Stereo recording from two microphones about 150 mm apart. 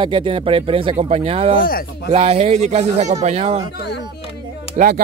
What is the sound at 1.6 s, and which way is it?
Speech, 75° left (ahead or behind).